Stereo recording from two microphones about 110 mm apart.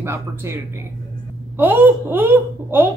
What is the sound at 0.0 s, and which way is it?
Speech, 20° right (ahead or behind).